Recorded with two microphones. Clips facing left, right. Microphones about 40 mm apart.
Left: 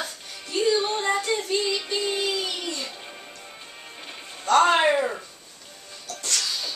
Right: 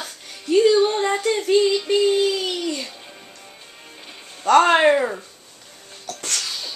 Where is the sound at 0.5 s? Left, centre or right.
Right.